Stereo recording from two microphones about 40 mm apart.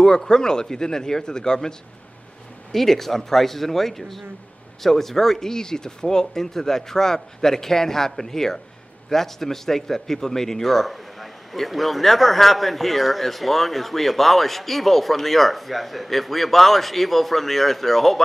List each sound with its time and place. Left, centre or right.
0.0 s speech: centre